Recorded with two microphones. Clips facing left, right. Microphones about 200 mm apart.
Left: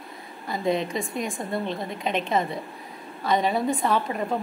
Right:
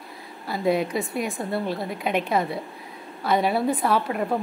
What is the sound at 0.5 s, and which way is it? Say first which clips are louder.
A woman's voice: right 2 dB; 5° right (ahead or behind).